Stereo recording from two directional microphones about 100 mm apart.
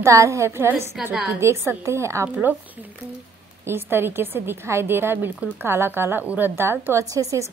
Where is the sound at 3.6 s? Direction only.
20° right (ahead or behind).